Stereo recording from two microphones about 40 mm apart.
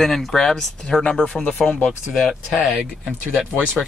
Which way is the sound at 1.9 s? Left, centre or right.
Centre.